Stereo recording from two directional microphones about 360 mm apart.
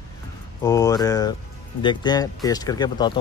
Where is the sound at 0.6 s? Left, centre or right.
Centre.